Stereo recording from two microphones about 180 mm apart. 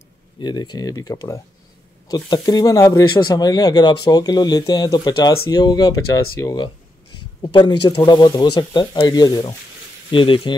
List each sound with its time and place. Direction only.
0.4 s speech: 25° left (ahead or behind)